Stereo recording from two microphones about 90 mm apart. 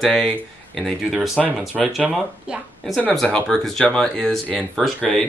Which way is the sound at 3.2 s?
5° left (ahead or behind).